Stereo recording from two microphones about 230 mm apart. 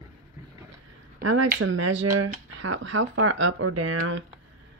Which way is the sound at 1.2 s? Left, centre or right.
Right.